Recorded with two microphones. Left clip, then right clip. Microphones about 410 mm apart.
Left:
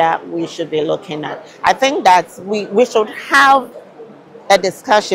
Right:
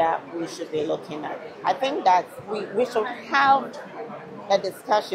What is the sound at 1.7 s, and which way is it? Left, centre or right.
A woman's voice, left.